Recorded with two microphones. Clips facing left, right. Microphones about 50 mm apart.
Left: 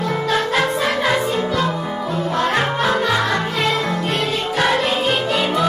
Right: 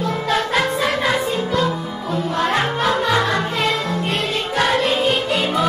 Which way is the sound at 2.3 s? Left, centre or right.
Centre.